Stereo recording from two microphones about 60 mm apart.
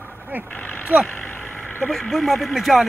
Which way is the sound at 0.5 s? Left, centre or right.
Left.